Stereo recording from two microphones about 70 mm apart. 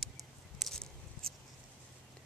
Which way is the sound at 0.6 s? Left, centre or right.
Centre.